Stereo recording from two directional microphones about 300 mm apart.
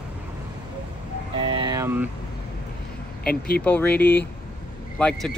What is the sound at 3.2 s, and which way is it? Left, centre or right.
Speech, left.